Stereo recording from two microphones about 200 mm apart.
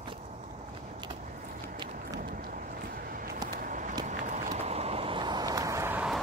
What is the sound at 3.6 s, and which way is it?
Run, 40° right (ahead or behind).